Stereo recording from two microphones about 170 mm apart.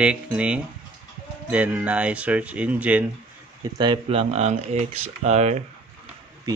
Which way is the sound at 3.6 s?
25° right (ahead or behind).